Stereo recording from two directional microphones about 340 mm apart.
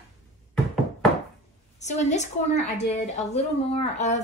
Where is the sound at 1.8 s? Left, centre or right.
Centre.